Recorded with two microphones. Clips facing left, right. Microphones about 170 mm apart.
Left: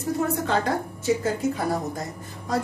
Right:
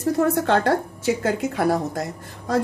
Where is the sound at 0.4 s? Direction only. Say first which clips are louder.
Right 5 dB; 70° right (ahead or behind).